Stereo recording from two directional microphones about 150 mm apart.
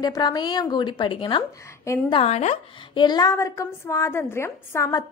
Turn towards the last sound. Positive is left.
turn(degrees=20)  # may be behind; listen again after turning